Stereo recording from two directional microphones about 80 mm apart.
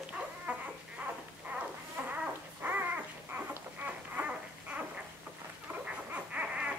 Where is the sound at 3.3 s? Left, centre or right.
Right.